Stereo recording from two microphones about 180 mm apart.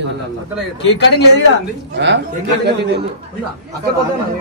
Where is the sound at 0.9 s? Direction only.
75° left (ahead or behind).